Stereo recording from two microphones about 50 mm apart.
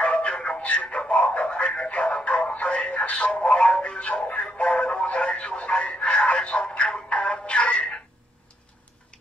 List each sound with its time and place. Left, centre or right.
0.0 s music: left